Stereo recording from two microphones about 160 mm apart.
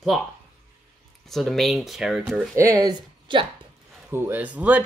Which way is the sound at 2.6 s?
25° right (ahead or behind).